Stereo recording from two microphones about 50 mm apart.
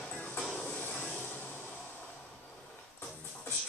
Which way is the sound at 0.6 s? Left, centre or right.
Left.